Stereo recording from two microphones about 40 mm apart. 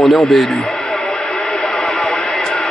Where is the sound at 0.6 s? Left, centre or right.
Centre.